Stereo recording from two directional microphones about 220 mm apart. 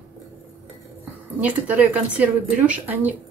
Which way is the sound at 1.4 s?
5° right (ahead or behind).